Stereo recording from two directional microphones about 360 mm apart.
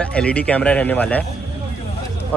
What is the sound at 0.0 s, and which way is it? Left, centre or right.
A man's voice, centre.